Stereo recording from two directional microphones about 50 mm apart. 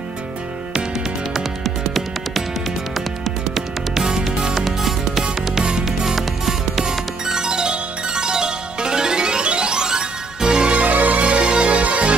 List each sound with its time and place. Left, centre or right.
1.3 s music: centre
3.5 s music: centre
5.2 s music: centre